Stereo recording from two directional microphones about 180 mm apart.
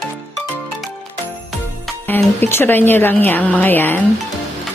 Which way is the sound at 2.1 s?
10° left (ahead or behind).